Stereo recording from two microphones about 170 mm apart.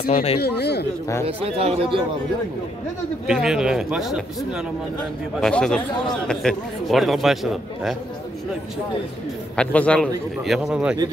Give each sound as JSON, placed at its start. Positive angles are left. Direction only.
{"t": 0.1, "sound": "speech", "side_deg": 35}
{"t": 0.4, "sound": "speech", "side_deg": 75}
{"t": 1.2, "sound": "speech", "side_deg": -35}
{"t": 3.3, "sound": "a man's voice", "side_deg": -5}
{"t": 9.6, "sound": "a man's voice", "side_deg": 5}